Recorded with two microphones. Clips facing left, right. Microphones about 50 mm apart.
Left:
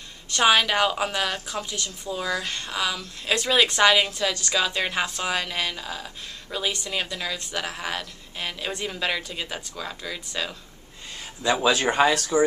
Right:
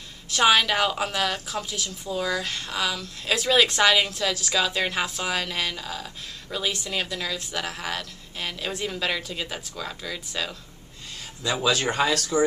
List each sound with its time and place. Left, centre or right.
0.3 s a woman's voice: centre